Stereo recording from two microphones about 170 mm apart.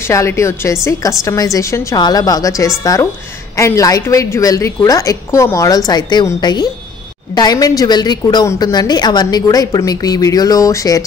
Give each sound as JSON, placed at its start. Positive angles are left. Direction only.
{"t": 0.1, "sound": "a woman's voice", "side_deg": 15}